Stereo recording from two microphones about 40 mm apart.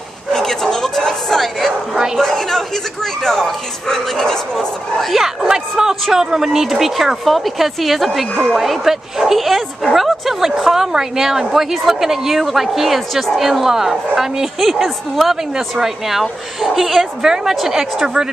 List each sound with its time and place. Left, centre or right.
0.3 s bow-wow: centre
2.1 s speech: centre
5.1 s a woman's voice: centre
17.0 s a woman's voice: centre